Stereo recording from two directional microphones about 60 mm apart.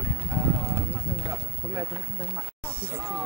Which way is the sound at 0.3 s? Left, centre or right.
Right.